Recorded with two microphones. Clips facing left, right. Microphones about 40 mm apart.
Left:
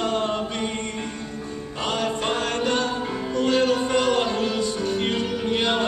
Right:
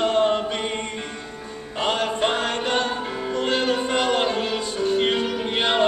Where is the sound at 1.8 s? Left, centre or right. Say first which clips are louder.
Right 3 dB; right.